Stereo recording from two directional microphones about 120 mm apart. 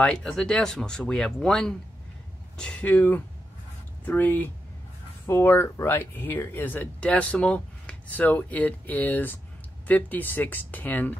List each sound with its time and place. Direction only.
0.0 s speech: 5° left (ahead or behind)